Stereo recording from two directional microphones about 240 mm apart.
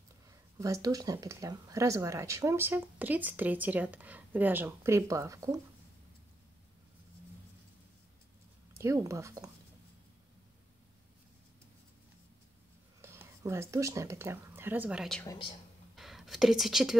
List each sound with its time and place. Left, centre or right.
0.6 s speech: centre
8.7 s speech: centre
13.0 s speech: centre
15.2 s speech: centre
16.0 s speech: centre